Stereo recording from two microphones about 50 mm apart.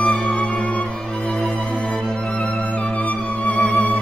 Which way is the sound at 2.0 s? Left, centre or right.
Centre.